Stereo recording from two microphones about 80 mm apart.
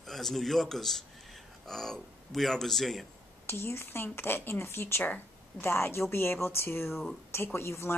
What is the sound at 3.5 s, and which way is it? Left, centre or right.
A woman's voice, left.